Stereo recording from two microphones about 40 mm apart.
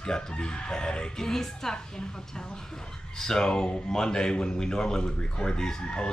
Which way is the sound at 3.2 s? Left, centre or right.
Centre.